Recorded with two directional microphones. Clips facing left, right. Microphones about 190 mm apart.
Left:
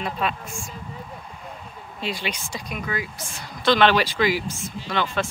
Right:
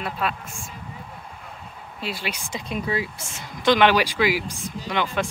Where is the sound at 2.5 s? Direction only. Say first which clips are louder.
Right 8 dB; 30° right (ahead or behind).